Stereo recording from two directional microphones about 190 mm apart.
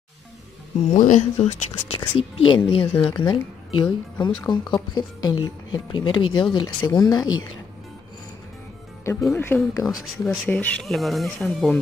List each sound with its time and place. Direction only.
0.8 s speech: 40° left (ahead or behind)
4.5 s speech: 25° left (ahead or behind)
9.0 s speech: 15° left (ahead or behind)